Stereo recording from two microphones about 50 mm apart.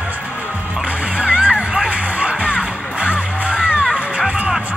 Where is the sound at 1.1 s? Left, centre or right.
Right.